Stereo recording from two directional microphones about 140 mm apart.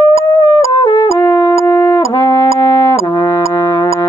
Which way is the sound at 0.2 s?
25° left (ahead or behind).